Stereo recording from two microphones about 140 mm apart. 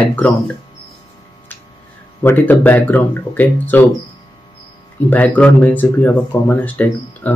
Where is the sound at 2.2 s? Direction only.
15° left (ahead or behind).